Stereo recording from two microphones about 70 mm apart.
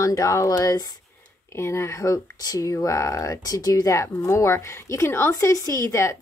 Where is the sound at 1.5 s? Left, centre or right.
Left.